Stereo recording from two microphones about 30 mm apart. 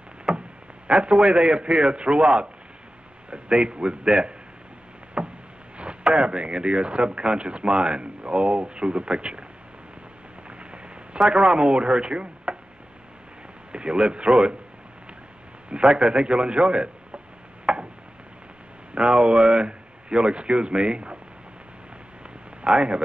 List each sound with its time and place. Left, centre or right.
0.3 s a sound: centre
1.1 s a man's voice: right
5.2 s boat: right
6.1 s speech: right
11.2 s speech: right
13.7 s speech: right
15.9 s speech: right
17.7 s a sound: right
18.9 s speech: right
22.7 s speech: centre